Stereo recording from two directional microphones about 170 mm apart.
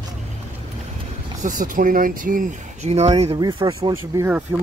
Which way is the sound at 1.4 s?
50° right (ahead or behind).